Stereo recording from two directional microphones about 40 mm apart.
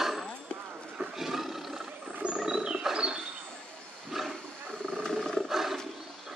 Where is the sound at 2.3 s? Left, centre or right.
Centre.